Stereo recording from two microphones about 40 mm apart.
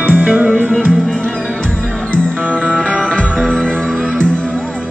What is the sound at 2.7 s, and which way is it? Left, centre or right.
Music, left.